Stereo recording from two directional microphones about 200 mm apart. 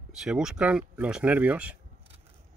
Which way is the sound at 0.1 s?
Centre (ahead or behind).